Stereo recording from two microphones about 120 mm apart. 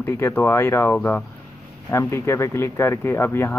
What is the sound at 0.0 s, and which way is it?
Speech, 20° left (ahead or behind).